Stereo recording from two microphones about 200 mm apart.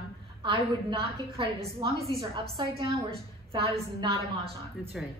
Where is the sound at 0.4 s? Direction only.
25° right (ahead or behind).